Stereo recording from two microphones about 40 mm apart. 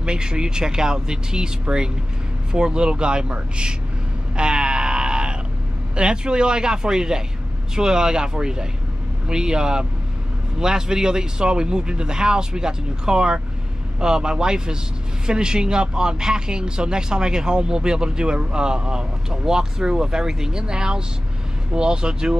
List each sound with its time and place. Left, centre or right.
0.0 s speech: right
4.4 s grunt: right
5.9 s speech: right